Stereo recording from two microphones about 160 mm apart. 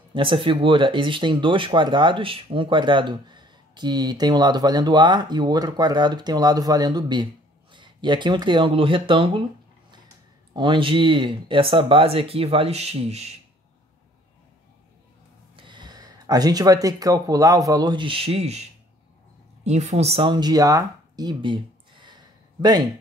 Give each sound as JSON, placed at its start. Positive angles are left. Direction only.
{"t": 0.1, "sound": "speech", "side_deg": -30}
{"t": 10.5, "sound": "speech", "side_deg": -30}
{"t": 15.5, "sound": "speech", "side_deg": -30}